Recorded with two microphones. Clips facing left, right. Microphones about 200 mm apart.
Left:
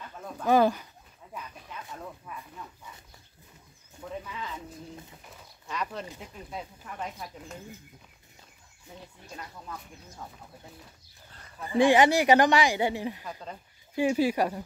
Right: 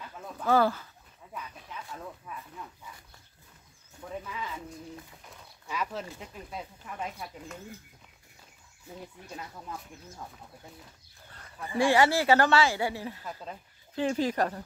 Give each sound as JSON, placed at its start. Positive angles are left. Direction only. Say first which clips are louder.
{"t": 0.5, "sound": "a woman's voice", "louder": "left 2 dB", "side_deg": 15}
{"t": 5.7, "sound": "speech", "louder": "even", "side_deg": -5}
{"t": 11.7, "sound": "a woman's voice", "louder": "left 3 dB", "side_deg": 20}